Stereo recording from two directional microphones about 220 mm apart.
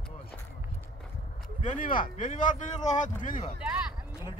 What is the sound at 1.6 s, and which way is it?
Speech, 35° left (ahead or behind).